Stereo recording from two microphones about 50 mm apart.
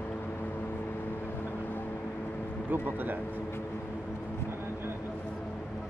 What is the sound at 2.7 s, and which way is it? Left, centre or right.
Speech, right.